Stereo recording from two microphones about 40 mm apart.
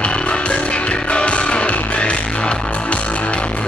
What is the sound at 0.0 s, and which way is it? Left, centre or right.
Music, left.